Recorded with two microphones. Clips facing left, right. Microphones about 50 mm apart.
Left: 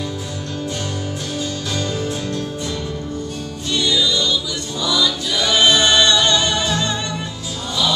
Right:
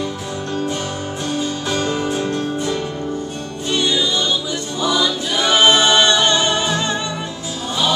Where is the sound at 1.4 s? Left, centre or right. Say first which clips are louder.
Right 3 dB; right.